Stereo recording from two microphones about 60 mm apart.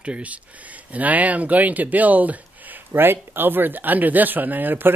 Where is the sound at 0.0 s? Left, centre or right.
Right.